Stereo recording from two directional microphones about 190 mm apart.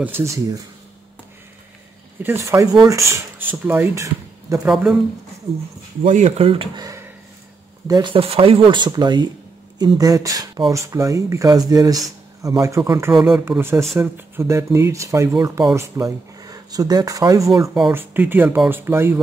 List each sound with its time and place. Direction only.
0.0 s speech: 15° right (ahead or behind)
2.2 s speech: 15° right (ahead or behind)
4.6 s speech: centre (ahead or behind)
6.0 s speech: 40° right (ahead or behind); by 17.6 s 15° right (ahead or behind)
17.7 s speech: 5° right (ahead or behind)